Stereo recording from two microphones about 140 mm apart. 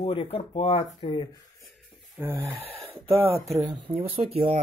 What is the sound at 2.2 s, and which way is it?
Speech, 15° right (ahead or behind).